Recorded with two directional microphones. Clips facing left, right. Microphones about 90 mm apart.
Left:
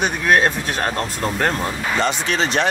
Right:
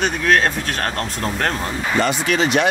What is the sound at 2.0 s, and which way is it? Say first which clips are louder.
Speech: right 1 dB; 30° left (ahead or behind).